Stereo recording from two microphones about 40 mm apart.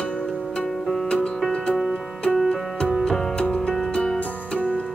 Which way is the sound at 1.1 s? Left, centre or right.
Left.